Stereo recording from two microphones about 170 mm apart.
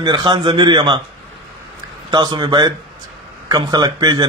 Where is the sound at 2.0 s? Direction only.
25° right (ahead or behind).